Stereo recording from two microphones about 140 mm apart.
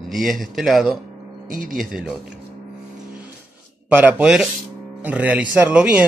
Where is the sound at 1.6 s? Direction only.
75° right (ahead or behind).